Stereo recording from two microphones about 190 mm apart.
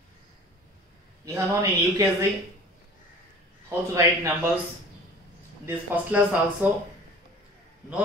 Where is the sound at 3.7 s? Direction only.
15° right (ahead or behind).